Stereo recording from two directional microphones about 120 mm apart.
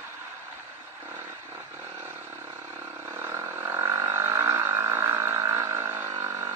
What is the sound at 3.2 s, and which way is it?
Frog, 25° right (ahead or behind).